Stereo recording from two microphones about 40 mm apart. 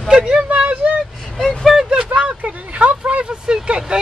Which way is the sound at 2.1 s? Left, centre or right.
Right.